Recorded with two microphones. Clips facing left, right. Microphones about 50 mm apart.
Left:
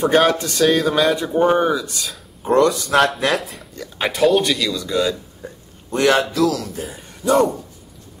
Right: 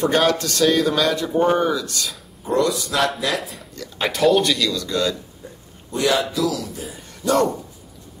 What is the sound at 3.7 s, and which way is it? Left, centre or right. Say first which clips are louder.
Speech: left 1 dB; centre.